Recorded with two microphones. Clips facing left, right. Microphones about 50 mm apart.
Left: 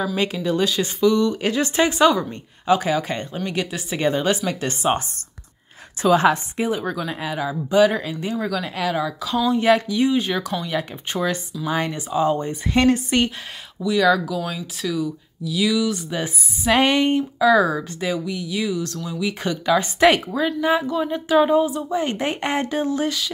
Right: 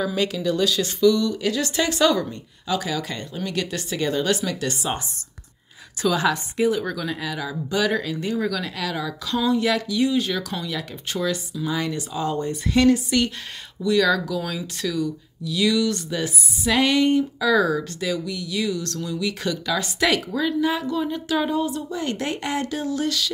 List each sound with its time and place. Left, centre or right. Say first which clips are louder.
0.1 s a woman's voice: left 1 dB; left
2.6 s speech: left 7 dB; left
3.4 s a woman's voice: right 1 dB; left
6.0 s a woman's voice: left 5 dB; left
9.5 s a woman's voice: left 5 dB; left
12.8 s speech: even; left
13.8 s speech: left 2 dB; centre
16.1 s a woman's voice: even; left
17.4 s a woman's voice: left 3 dB; centre